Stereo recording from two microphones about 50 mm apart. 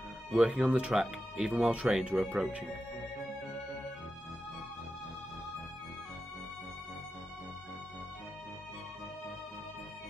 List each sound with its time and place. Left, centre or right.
0.3 s speech: centre
3.0 s music: centre